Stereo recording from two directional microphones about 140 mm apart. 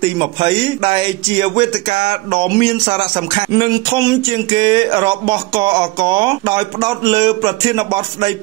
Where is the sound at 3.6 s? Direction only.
30° right (ahead or behind).